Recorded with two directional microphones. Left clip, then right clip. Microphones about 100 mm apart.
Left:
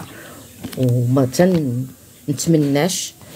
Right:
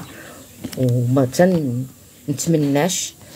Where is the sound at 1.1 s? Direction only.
5° left (ahead or behind).